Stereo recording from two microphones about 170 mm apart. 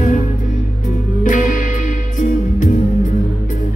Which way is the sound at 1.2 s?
50° left (ahead or behind).